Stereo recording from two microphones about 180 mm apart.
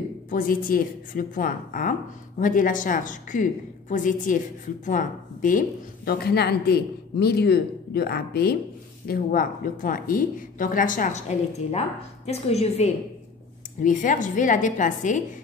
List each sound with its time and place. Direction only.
0.3 s a woman's voice: 50° left (ahead or behind)